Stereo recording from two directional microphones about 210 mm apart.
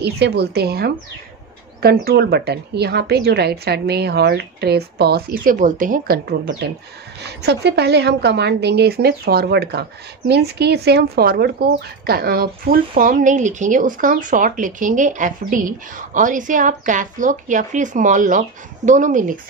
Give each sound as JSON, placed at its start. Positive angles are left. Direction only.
{"t": 0.0, "sound": "a woman's voice", "side_deg": -50}